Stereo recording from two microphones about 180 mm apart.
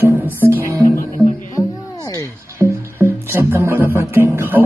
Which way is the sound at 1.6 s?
20° left (ahead or behind).